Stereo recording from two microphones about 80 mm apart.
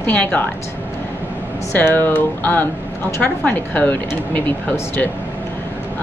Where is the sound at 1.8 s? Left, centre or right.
Left.